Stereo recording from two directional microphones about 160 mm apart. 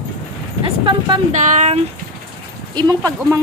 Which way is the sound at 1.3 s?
45° right (ahead or behind).